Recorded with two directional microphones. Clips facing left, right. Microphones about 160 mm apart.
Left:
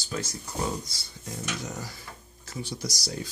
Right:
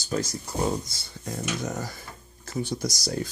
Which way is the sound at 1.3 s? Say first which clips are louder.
Right 5 dB; 50° right (ahead or behind).